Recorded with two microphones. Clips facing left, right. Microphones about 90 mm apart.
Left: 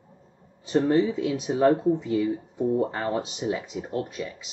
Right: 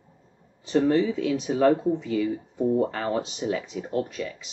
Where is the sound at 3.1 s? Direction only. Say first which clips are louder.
Right 1 dB; 5° left (ahead or behind).